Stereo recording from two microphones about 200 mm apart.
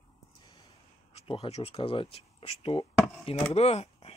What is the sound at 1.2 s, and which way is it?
Speech, 30° left (ahead or behind).